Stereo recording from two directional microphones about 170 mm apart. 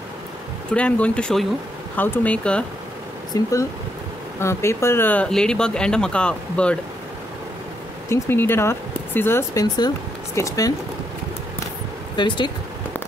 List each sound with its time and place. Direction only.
0.7 s speech: 5° left (ahead or behind)
3.3 s speech: 20° left (ahead or behind)
8.1 s speech: 15° left (ahead or behind)
12.2 s speech: 30° left (ahead or behind)